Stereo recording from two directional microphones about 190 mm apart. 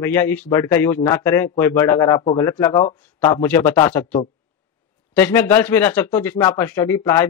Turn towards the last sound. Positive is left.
turn(degrees=10)  # may be behind; listen again after turning